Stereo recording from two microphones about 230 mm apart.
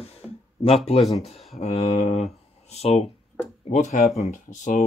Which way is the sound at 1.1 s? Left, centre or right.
Left.